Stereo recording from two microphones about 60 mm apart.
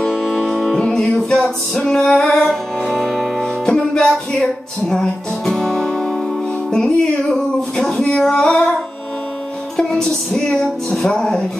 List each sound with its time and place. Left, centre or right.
0.1 s music: centre
6.7 s female singing: centre
9.8 s female singing: centre